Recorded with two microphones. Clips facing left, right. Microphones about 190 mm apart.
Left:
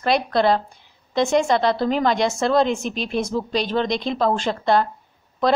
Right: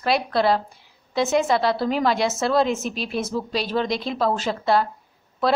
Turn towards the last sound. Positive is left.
turn(degrees=-5)  # may be behind; listen again after turning